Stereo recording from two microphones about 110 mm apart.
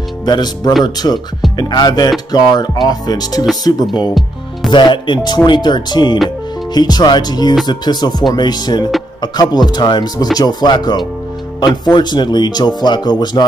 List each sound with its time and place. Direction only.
0.2 s speech: 40° left (ahead or behind)
4.6 s speech: 45° left (ahead or behind)